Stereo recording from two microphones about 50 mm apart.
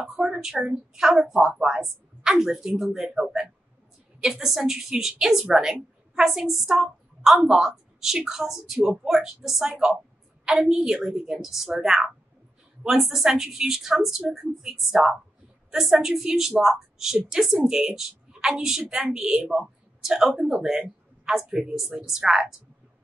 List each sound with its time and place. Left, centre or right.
0.1 s a woman's voice: centre